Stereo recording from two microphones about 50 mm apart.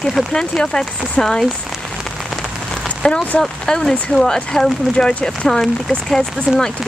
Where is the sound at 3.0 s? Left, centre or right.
Left.